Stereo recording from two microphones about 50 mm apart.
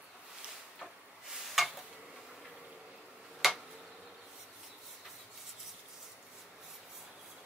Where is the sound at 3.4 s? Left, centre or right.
Centre.